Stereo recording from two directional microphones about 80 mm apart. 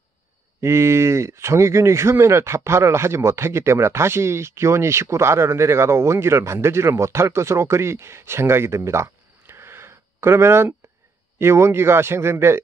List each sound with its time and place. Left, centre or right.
0.6 s speech: right